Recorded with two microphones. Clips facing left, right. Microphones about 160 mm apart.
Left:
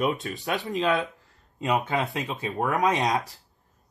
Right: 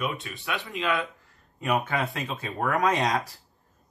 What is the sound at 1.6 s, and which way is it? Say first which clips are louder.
Speech: left 1 dB; 20° left (ahead or behind).